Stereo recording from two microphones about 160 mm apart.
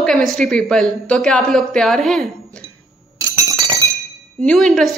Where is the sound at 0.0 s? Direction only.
Centre (ahead or behind).